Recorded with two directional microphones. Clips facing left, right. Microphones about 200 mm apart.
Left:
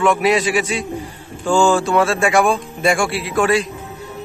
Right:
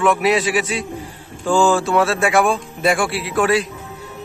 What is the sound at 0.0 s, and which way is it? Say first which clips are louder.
A man's voice: left 1 dB; centre (ahead or behind).